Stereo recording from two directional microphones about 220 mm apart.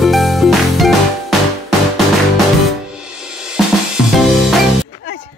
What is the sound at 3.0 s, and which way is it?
Music, 5° right (ahead or behind).